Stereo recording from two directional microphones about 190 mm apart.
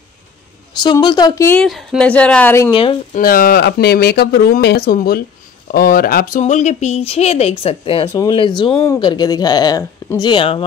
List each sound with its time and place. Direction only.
0.7 s speech: 25° left (ahead or behind)
1.6 s a woman's voice: centre (ahead or behind)
2.7 s speech: 25° left (ahead or behind)
3.2 s speech: 50° left (ahead or behind); by 8.1 s 30° left (ahead or behind)
8.1 s speech: 20° left (ahead or behind)